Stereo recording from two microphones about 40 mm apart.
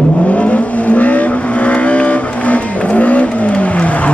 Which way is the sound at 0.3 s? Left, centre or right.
Left.